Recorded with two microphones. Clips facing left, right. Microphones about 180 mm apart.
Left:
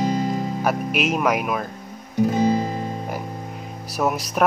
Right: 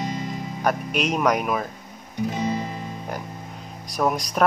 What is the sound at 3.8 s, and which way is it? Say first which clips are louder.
Speech: even; 5° left (ahead or behind).